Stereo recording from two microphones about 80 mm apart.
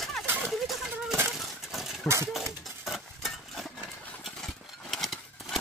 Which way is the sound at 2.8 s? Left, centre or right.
Centre.